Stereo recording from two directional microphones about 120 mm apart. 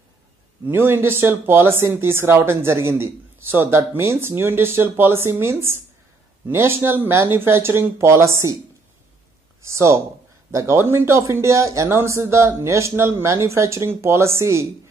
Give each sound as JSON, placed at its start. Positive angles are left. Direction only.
{"t": 0.7, "sound": "speech", "side_deg": -20}
{"t": 9.7, "sound": "speech", "side_deg": -25}